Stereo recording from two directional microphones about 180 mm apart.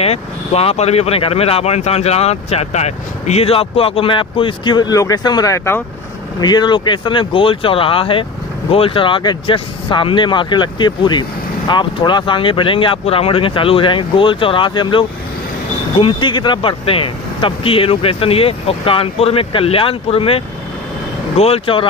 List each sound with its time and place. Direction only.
0.0 s speech: 35° left (ahead or behind)